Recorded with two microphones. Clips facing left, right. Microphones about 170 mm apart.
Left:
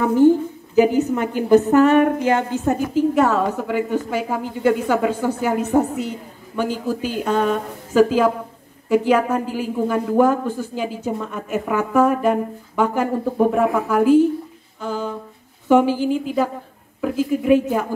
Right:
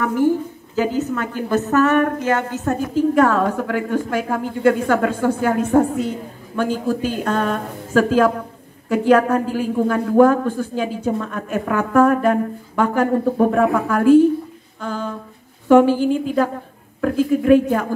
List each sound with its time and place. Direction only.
0.0 s a woman's voice: 20° left (ahead or behind)
14.8 s humming: 10° left (ahead or behind)
15.7 s a woman's voice: 10° left (ahead or behind)